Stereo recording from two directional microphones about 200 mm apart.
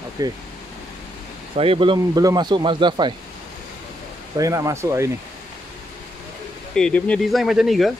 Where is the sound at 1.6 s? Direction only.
25° right (ahead or behind).